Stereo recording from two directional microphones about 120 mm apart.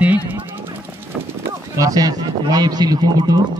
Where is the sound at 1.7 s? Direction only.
30° right (ahead or behind).